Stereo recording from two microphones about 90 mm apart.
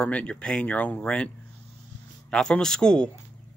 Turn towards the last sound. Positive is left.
turn(degrees=10)  # may be behind; listen again after turning